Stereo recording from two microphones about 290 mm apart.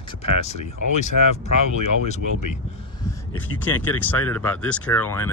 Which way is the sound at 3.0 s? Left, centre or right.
Centre.